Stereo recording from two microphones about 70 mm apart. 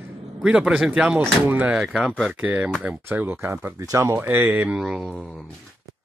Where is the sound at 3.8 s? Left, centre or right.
Right.